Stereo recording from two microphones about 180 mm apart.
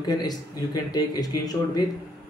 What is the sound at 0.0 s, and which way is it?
Speech, 20° left (ahead or behind).